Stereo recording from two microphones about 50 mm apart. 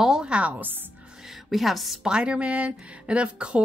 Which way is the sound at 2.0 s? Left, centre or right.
Centre.